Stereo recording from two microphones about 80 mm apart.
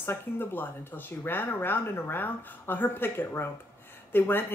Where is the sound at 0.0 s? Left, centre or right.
Left.